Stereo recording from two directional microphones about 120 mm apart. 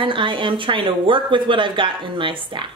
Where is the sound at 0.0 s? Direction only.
45° right (ahead or behind).